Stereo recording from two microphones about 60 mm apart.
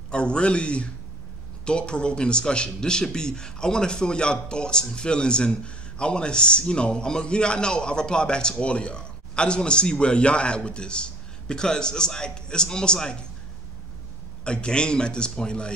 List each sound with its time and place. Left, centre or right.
0.1 s a man's voice: centre
14.4 s a man's voice: centre